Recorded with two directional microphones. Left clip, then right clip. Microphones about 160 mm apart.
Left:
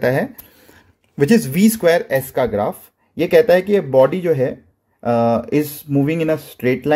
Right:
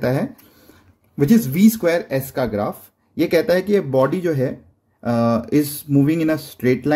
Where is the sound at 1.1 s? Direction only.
20° left (ahead or behind).